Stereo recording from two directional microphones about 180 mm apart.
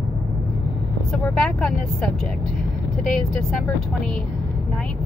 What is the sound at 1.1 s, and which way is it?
Speech, 5° left (ahead or behind).